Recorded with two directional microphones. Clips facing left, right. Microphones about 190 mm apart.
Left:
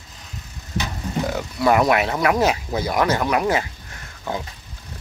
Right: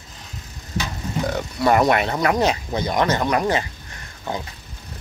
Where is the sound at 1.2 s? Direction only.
5° left (ahead or behind).